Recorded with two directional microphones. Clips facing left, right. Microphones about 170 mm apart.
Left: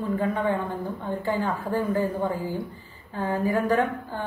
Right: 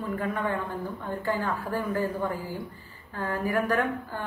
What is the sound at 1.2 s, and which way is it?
A woman's voice, 20° left (ahead or behind).